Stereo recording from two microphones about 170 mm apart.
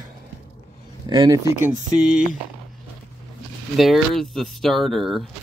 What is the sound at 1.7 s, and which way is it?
Speech, 5° right (ahead or behind).